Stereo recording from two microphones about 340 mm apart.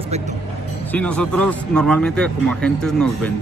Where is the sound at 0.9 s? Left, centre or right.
Centre.